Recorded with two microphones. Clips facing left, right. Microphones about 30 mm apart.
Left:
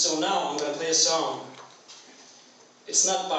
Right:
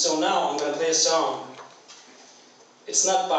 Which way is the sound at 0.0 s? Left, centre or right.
Centre.